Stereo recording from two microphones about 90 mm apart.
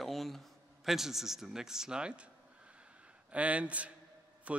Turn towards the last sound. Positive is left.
turn(degrees=-15)  # may be behind; listen again after turning